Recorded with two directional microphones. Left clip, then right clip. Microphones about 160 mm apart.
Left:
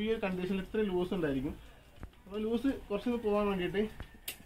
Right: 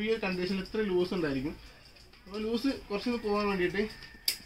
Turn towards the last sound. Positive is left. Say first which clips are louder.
# right 3 dB
turn(degrees=-10)  # may be behind; listen again after turning